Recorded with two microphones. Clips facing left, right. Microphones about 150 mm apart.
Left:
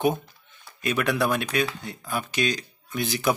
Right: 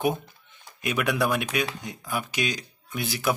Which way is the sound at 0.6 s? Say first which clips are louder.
Left 1 dB; 10° right (ahead or behind).